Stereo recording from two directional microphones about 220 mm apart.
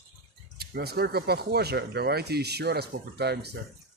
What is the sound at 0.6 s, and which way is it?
Speech, 45° right (ahead or behind).